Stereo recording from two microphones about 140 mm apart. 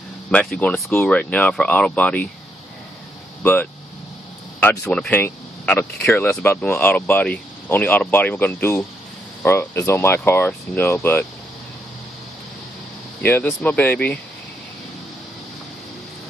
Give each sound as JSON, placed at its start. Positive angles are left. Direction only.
{"t": 0.3, "sound": "speech", "side_deg": 10}
{"t": 4.8, "sound": "speech", "side_deg": 5}
{"t": 13.2, "sound": "speech", "side_deg": 10}